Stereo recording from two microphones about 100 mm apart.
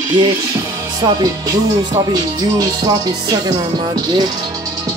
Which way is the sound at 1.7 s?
45° right (ahead or behind).